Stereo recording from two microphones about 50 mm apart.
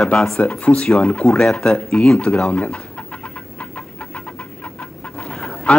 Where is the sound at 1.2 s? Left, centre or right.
Centre.